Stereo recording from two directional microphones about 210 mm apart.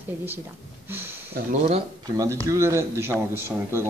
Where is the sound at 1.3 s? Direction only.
35° right (ahead or behind).